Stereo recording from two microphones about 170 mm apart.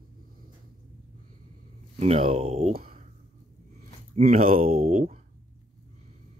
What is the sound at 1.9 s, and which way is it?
Speech, 40° right (ahead or behind).